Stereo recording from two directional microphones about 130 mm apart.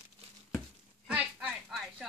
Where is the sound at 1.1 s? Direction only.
10° right (ahead or behind).